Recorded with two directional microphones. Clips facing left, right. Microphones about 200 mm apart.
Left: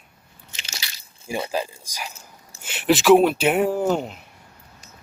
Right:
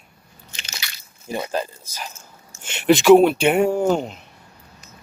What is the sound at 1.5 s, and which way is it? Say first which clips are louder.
Speech: right 1 dB; 15° left (ahead or behind).